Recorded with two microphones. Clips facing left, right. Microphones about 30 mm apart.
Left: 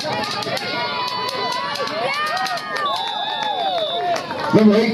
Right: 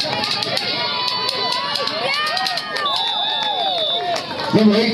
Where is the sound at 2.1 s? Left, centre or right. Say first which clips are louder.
Right 1 dB; right.